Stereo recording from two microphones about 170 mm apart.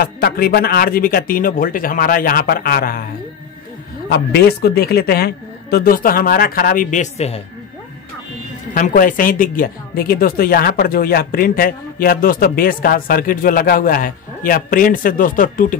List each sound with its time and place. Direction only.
0.0 s speech: 65° left (ahead or behind)
4.1 s speech: 75° left (ahead or behind); by 7.4 s 35° left (ahead or behind)
8.7 s speech: 55° left (ahead or behind)